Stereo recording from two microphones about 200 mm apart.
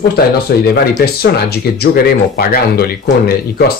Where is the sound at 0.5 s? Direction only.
55° left (ahead or behind).